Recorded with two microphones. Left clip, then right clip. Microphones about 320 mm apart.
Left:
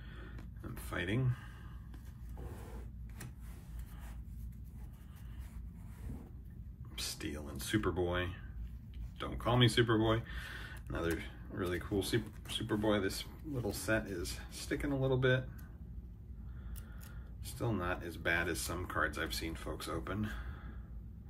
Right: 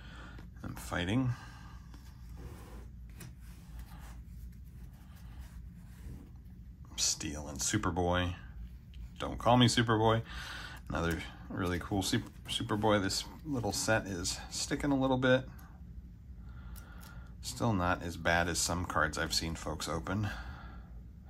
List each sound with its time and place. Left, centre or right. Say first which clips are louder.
0.9 s speech: right 3 dB; centre
7.0 s speech: right 7 dB; centre
17.5 s speech: right 6 dB; centre